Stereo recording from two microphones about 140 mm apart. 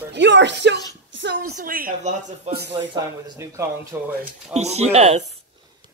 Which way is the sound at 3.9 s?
15° right (ahead or behind).